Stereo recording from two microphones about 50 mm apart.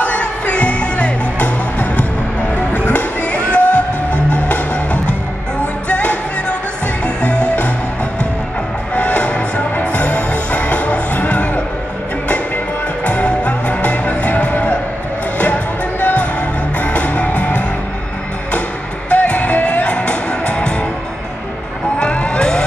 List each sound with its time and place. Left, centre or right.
0.0 s music: left
5.9 s music: left
7.2 s music: left
13.0 s music: left
19.0 s music: left
22.0 s vehicle: left